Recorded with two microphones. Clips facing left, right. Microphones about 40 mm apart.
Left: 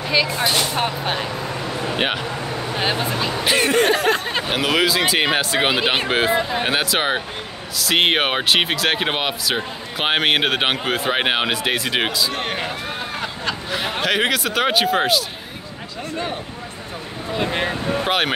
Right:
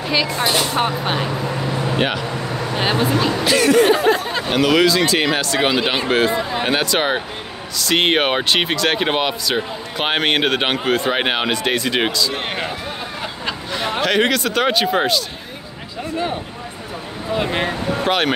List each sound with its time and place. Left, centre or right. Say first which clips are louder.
0.0 s speech: even; centre
2.0 s speech: right 1 dB; centre
2.8 s speech: right 4 dB; centre
3.4 s speech: right 3 dB; left
3.8 s a sound: right 3 dB; left
4.5 s speech: right 5 dB; centre
12.4 s speech: right 1 dB; centre
13.7 s speech: right 2 dB; centre
17.4 s speech: right 1 dB; centre
17.6 s speech: right 2 dB; centre